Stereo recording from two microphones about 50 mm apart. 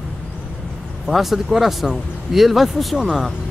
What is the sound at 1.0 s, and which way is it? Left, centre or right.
Speech, centre.